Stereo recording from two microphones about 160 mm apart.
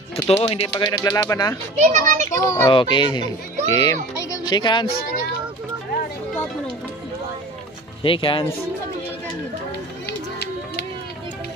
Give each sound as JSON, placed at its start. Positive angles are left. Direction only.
{"t": 0.1, "sound": "speech", "side_deg": 40}
{"t": 0.9, "sound": "speech", "side_deg": 20}
{"t": 1.8, "sound": "a child's voice", "side_deg": -50}
{"t": 2.2, "sound": "speech", "side_deg": 20}
{"t": 2.7, "sound": "speech", "side_deg": 30}
{"t": 8.0, "sound": "speech", "side_deg": 35}
{"t": 10.0, "sound": "a sound", "side_deg": 85}